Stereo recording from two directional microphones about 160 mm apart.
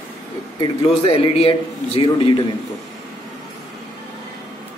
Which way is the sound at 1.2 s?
35° left (ahead or behind).